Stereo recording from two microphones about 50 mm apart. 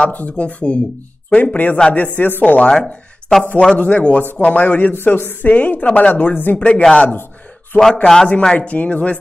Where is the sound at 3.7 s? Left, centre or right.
Left.